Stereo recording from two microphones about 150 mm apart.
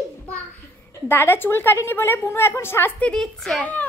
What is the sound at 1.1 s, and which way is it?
A woman's voice, 15° left (ahead or behind).